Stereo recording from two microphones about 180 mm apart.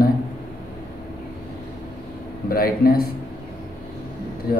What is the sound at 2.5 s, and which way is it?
Speech, 55° left (ahead or behind).